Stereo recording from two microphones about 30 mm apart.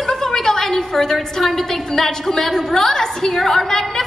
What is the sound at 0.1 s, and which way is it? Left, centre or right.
A woman's voice, centre.